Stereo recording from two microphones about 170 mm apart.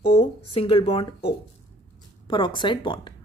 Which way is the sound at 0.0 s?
35° left (ahead or behind).